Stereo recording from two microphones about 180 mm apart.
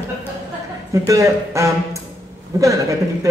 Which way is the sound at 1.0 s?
15° right (ahead or behind).